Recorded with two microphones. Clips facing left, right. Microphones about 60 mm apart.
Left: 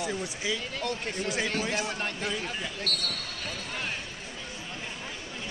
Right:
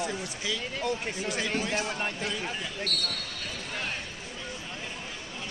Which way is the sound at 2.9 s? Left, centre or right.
Left.